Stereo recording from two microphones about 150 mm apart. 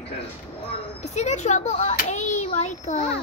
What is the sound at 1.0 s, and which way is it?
Speech, 50° left (ahead or behind).